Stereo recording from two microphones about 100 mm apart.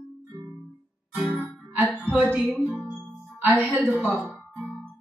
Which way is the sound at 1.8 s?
10° left (ahead or behind).